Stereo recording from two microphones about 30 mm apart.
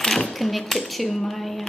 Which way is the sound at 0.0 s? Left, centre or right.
Centre.